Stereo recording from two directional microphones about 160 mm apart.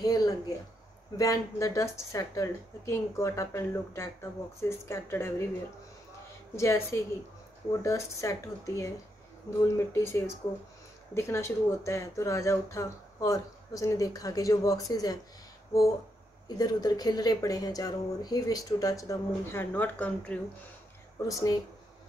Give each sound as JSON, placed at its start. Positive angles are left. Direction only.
{"t": 0.0, "sound": "a sound", "side_deg": 25}
{"t": 1.1, "sound": "speech", "side_deg": 20}
{"t": 6.5, "sound": "speech", "side_deg": 15}
{"t": 16.4, "sound": "speech", "side_deg": 25}
{"t": 21.3, "sound": "speech", "side_deg": 20}